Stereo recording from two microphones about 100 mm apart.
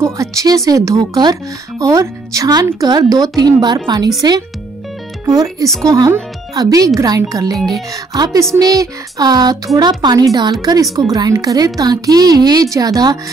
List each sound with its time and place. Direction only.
0.0 s speech: 35° right (ahead or behind)
5.2 s speech: 40° right (ahead or behind)